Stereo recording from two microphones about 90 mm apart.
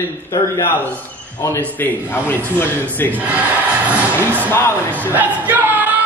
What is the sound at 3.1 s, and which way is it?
Speech, 15° right (ahead or behind).